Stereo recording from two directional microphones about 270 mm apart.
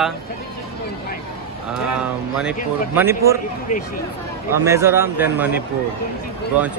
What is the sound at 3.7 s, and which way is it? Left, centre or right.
Speech, left.